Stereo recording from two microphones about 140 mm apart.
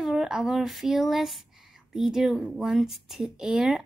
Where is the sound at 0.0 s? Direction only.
5° right (ahead or behind).